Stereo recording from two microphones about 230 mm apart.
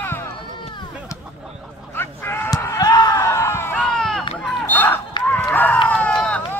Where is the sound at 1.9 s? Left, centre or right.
Centre.